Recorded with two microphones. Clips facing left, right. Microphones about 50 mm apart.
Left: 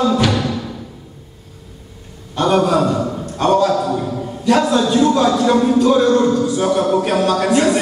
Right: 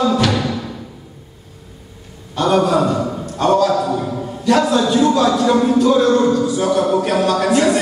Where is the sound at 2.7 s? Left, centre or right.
Centre.